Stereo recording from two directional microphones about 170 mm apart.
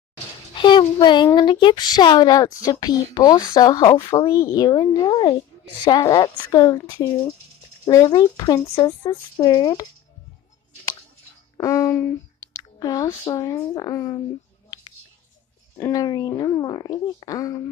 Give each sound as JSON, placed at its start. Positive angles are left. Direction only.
{"t": 0.6, "sound": "speech", "side_deg": 30}
{"t": 11.5, "sound": "speech", "side_deg": 20}
{"t": 15.9, "sound": "speech", "side_deg": 20}